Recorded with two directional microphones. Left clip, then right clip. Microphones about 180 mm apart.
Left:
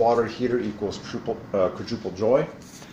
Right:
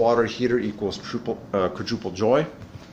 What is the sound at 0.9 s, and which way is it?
Speech, 35° right (ahead or behind).